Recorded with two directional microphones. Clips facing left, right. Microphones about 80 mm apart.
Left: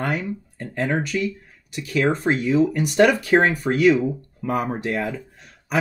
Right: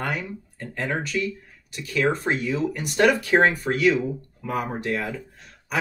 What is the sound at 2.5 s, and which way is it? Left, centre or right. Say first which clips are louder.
Speech: left 6 dB; left.